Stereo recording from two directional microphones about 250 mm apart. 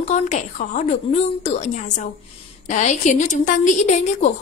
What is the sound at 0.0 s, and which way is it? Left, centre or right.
A woman's voice, left.